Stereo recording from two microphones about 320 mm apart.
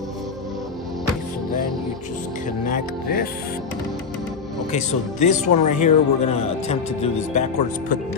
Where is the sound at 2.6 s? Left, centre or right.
Left.